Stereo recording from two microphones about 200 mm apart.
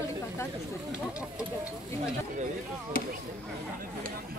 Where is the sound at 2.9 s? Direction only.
45° left (ahead or behind).